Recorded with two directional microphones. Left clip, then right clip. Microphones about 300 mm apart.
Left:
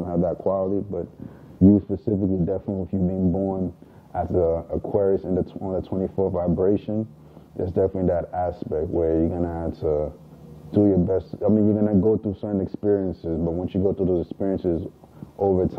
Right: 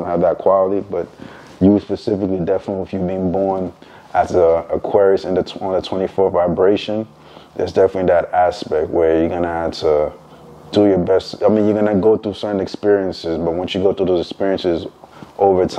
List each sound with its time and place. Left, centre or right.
0.0 s a man's voice: centre
3.2 s speech: centre